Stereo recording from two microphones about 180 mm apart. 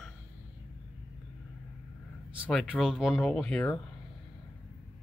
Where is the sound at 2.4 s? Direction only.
Centre (ahead or behind).